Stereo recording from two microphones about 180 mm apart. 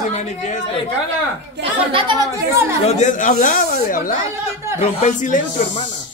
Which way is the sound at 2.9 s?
45° left (ahead or behind).